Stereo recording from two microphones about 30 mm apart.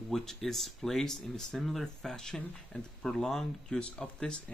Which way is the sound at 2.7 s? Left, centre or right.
Left.